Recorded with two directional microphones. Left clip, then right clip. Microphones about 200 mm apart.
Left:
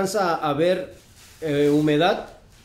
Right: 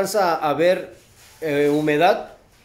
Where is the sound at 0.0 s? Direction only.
20° right (ahead or behind).